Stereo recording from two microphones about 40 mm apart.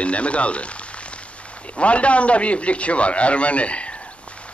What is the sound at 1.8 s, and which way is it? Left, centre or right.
A man's voice, left.